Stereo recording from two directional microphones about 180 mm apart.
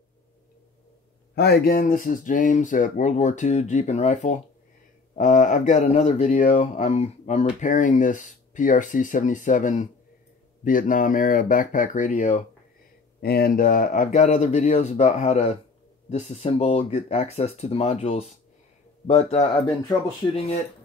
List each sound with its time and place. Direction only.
1.3 s speech: 60° left (ahead or behind); by 12.4 s 45° left (ahead or behind)
13.2 s speech: 60° left (ahead or behind); by 19.6 s 35° left (ahead or behind)